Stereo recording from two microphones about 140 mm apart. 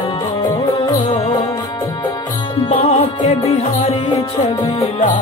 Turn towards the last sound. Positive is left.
turn(degrees=45)  # may be behind; listen again after turning